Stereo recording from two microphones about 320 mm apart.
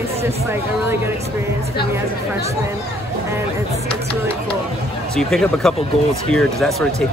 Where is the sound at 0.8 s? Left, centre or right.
Centre.